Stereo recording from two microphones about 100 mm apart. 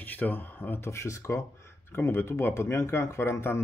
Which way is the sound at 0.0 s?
20° left (ahead or behind).